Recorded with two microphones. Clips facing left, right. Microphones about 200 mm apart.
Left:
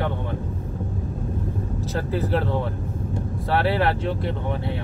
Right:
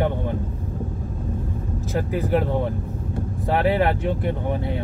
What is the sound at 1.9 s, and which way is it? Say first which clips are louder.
Speech: right 3 dB; 15° right (ahead or behind).